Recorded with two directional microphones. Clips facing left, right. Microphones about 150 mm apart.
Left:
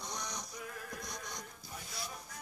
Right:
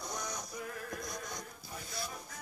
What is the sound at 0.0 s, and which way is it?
Music, 5° right (ahead or behind).